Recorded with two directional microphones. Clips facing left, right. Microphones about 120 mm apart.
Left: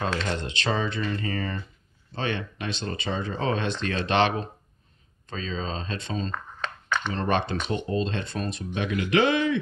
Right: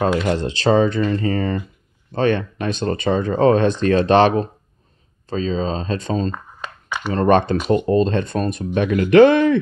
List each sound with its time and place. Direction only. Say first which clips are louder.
0.3 s speech: right 11 dB; 35° right (ahead or behind)
6.3 s a sound: right 1 dB; 10° right (ahead or behind)
7.1 s speech: right 12 dB; 45° right (ahead or behind)